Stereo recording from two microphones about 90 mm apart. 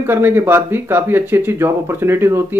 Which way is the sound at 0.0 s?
25° right (ahead or behind).